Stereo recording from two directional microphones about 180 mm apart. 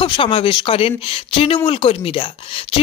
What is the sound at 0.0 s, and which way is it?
Speech, 30° left (ahead or behind).